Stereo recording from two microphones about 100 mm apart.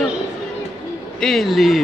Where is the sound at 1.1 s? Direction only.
5° left (ahead or behind).